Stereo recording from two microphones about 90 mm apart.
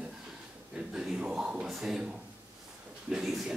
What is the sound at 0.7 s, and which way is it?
A man's voice, 10° right (ahead or behind).